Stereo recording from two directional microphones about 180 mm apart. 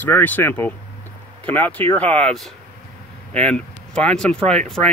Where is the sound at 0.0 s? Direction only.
10° left (ahead or behind).